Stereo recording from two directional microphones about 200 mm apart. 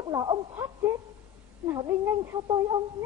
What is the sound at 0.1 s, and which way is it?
Speech, 20° right (ahead or behind).